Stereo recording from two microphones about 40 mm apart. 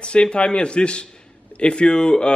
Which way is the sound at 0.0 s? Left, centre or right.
Left.